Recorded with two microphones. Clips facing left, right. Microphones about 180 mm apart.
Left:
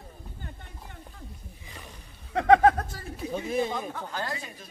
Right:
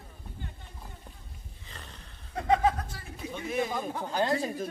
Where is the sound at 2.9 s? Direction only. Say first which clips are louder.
Left 6 dB; 35° left (ahead or behind).